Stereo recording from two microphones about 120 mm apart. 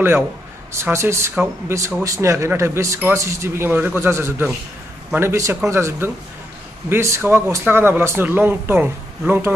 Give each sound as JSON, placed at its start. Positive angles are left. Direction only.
{"t": 0.7, "sound": "a man's voice", "side_deg": -20}